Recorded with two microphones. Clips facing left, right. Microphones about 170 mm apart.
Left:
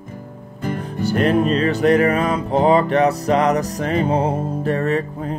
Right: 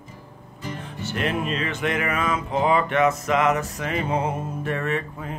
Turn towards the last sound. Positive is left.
turn(degrees=35)  # may be behind; listen again after turning